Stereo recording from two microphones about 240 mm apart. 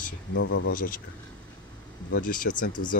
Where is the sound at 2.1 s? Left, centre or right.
Left.